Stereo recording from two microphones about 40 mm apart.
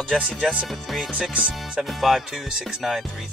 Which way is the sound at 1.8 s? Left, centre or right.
Centre.